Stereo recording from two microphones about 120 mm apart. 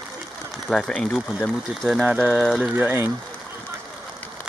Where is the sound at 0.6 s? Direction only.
5° left (ahead or behind).